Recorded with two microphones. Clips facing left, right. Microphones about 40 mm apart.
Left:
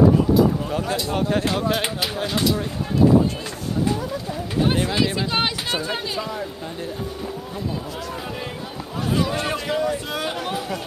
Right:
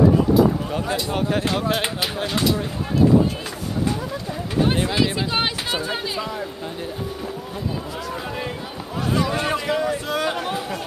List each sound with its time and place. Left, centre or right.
0.3 s speech: centre
4.6 s speech: centre
9.1 s a man's voice: centre